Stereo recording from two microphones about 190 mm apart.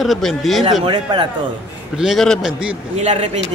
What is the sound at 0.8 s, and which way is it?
Speech, 25° right (ahead or behind).